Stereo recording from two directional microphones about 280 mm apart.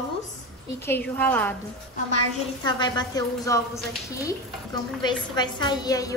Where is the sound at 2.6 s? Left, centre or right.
Centre.